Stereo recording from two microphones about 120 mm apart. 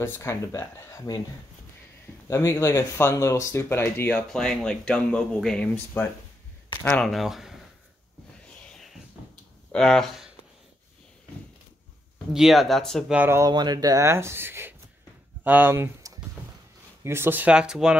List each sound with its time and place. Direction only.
0.0 s speech: 20° left (ahead or behind)
2.2 s speech: 25° left (ahead or behind)
4.3 s speech: 5° left (ahead or behind)
6.8 s speech: 5° left (ahead or behind)
8.6 s a sound: 5° left (ahead or behind)
9.7 s speech: 5° left (ahead or behind)
12.3 s speech: centre (ahead or behind)
13.1 s speech: 15° right (ahead or behind)
13.4 s speech: 35° right (ahead or behind); by 17.9 s 5° right (ahead or behind)